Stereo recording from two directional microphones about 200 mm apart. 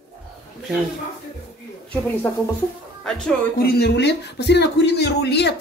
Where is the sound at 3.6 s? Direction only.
55° left (ahead or behind).